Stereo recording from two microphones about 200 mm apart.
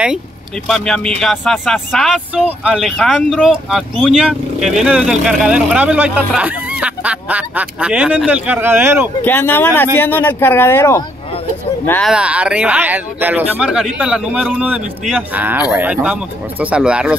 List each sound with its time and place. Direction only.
0.7 s speech: 5° left (ahead or behind)
9.2 s speech: 10° left (ahead or behind)
12.1 s speech: 5° right (ahead or behind)